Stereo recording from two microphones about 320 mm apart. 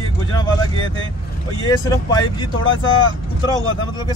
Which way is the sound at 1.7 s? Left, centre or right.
Centre.